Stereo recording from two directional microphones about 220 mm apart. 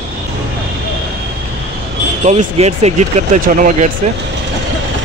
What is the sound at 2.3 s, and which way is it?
Speech, 30° right (ahead or behind).